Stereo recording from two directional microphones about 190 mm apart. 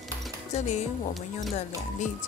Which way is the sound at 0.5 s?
35° left (ahead or behind).